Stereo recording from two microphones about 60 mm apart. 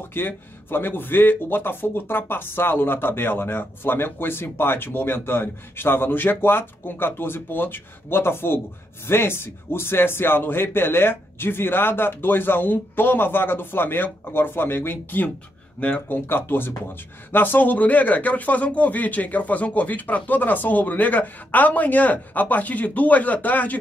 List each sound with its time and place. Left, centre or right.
0.2 s speech: left